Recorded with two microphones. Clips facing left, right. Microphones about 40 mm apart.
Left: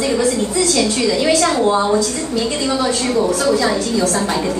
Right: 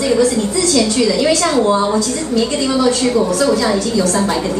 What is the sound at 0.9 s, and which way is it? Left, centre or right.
A woman's voice, centre.